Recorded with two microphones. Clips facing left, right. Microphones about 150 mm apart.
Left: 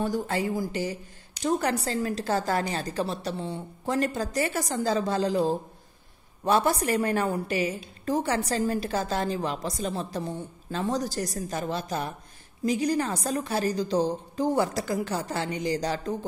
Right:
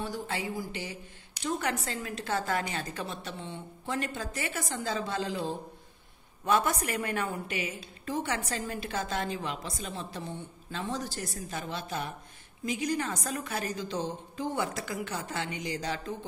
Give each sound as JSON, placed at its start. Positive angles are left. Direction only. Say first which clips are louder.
{"t": 0.0, "sound": "a woman's voice", "louder": "left 7 dB", "side_deg": 45}